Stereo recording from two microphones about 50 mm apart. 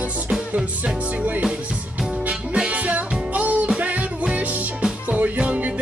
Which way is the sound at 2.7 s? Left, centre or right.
Right.